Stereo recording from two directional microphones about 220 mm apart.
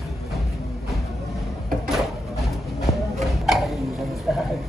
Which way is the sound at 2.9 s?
30° left (ahead or behind).